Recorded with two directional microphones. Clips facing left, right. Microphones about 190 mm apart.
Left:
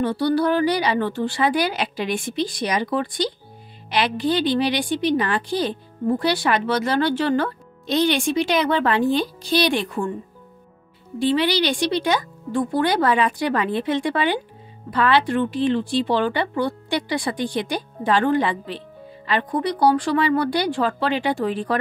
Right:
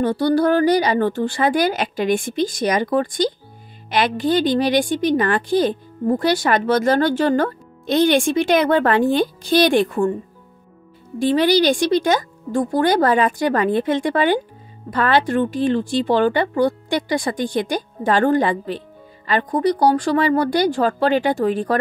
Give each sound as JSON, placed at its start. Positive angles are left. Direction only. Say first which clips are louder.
{"t": 0.0, "sound": "speech", "louder": "right 3 dB", "side_deg": -45}
{"t": 11.1, "sound": "speech", "louder": "right 4 dB", "side_deg": -45}